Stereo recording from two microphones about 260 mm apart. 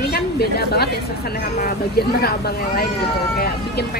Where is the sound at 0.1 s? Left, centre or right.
Left.